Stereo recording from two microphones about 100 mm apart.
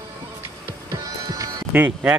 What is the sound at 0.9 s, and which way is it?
Music, 35° right (ahead or behind).